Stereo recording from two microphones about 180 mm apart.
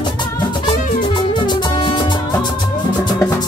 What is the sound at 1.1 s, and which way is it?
Music, 25° left (ahead or behind).